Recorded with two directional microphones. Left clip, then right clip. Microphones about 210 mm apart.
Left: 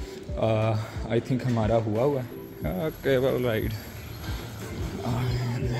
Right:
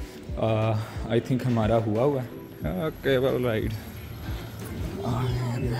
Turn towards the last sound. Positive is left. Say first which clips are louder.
# right 1 dB
turn(degrees=0)  # may be behind; listen again after turning